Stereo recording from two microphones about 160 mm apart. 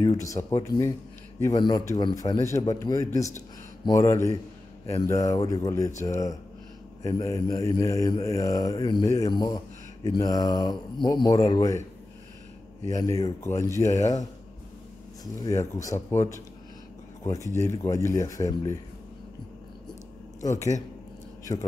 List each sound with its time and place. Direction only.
0.0 s speech: 20° left (ahead or behind)
12.9 s speech: 20° left (ahead or behind)
15.7 s speech: 20° left (ahead or behind)
20.3 s a man's voice: 20° left (ahead or behind)